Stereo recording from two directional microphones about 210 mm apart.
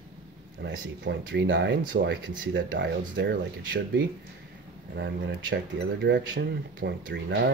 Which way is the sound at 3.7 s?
45° right (ahead or behind).